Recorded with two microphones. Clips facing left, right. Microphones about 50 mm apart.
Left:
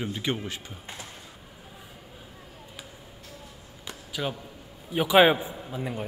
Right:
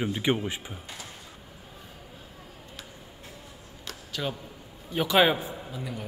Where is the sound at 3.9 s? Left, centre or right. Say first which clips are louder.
Left 1 dB; centre.